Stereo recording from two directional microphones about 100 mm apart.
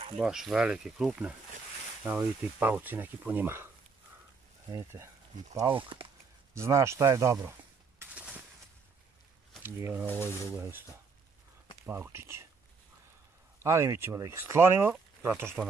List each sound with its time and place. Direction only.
0.2 s speech: 5° right (ahead or behind); by 3.7 s 25° right (ahead or behind)
4.7 s speech: 25° right (ahead or behind)
5.6 s speech: 40° right (ahead or behind)
8.1 s a sound: 10° right (ahead or behind)
9.6 s speech: 25° right (ahead or behind)
10.2 s speech: 25° left (ahead or behind)
11.8 s speech: 25° right (ahead or behind)
13.6 s speech: 30° right (ahead or behind)